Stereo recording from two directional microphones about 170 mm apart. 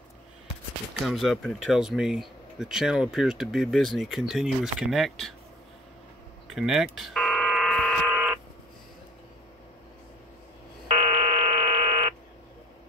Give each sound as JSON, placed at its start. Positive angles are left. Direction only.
{"t": 1.0, "sound": "speech", "side_deg": 0}
{"t": 6.4, "sound": "buzzer", "side_deg": 0}
{"t": 11.0, "sound": "a sound", "side_deg": -35}